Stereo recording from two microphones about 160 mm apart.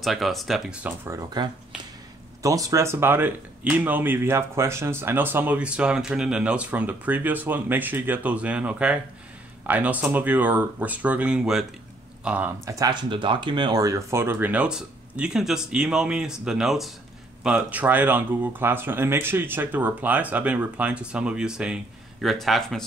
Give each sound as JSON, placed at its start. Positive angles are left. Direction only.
{"t": 0.0, "sound": "speech", "side_deg": 0}
{"t": 1.0, "sound": "speech", "side_deg": -25}